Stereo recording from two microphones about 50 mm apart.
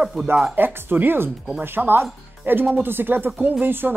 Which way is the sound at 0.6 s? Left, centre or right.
Right.